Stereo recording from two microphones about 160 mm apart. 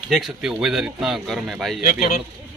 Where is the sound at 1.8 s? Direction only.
60° left (ahead or behind).